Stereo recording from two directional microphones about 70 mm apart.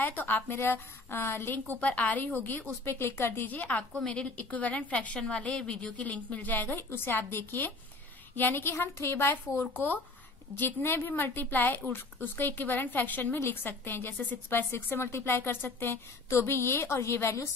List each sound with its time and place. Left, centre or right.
0.0 s a woman's voice: left